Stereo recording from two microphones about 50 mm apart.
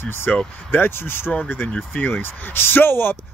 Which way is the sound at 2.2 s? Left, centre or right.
Left.